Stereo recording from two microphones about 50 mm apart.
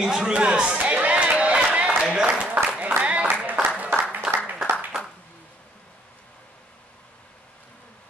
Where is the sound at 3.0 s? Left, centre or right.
Right.